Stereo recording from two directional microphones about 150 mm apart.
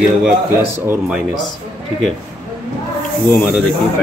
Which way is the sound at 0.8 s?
15° right (ahead or behind).